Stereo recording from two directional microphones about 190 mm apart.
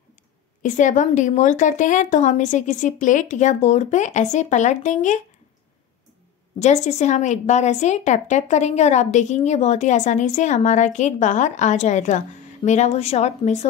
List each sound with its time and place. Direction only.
0.6 s a woman's voice: 40° left (ahead or behind)
6.6 s a woman's voice: 35° left (ahead or behind)